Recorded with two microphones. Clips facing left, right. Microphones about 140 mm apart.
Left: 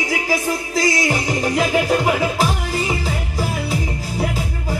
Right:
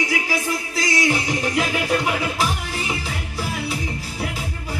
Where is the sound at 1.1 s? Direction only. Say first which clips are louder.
Left 2 dB; 40° left (ahead or behind).